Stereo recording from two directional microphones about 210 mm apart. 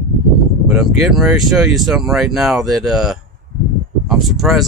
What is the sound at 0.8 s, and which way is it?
Speech, centre (ahead or behind).